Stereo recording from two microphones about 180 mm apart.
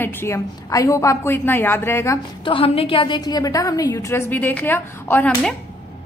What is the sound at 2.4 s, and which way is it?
A woman's voice, 30° left (ahead or behind).